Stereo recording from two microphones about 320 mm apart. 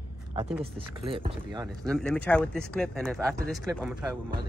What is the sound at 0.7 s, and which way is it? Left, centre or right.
Speech, centre.